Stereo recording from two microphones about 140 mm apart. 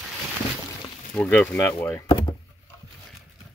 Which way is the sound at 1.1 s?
10° left (ahead or behind).